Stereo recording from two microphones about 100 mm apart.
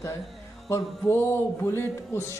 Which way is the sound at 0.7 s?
25° left (ahead or behind).